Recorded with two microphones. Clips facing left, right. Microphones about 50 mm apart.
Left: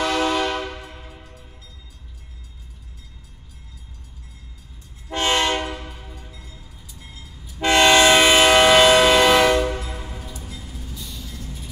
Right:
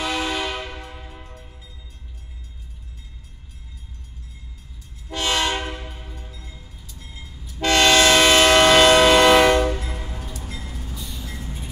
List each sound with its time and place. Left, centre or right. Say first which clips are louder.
0.0 s a sound: left 4 dB; centre
5.1 s train: left 2 dB; left
6.9 s vehicle: even; centre
7.5 s train: left 2 dB; left; by 9.7 s centre
9.8 s train: even; right
10.8 s train: right 1 dB; centre
11.3 s music: right 2 dB; right